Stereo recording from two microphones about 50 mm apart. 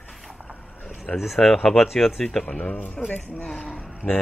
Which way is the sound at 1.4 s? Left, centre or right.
Centre.